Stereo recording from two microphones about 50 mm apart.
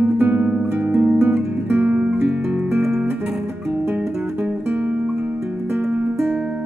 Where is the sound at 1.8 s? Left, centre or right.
Right.